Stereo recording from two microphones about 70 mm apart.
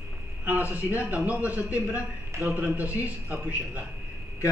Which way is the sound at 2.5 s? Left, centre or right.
Right.